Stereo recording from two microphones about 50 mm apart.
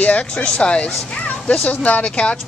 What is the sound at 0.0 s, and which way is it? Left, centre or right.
Speech, left.